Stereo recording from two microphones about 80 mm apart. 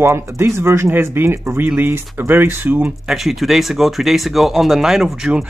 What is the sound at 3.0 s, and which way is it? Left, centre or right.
Speech, centre.